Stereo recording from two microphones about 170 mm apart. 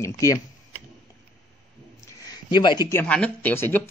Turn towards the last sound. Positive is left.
turn(degrees=10)  # may be behind; listen again after turning